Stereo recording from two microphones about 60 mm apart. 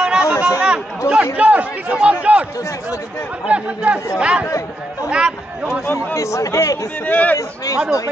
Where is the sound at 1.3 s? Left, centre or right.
Right.